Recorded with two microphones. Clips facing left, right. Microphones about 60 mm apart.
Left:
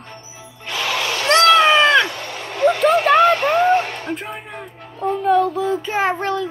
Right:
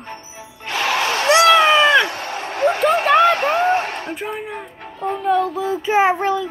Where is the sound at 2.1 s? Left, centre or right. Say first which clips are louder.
Right 3 dB; right.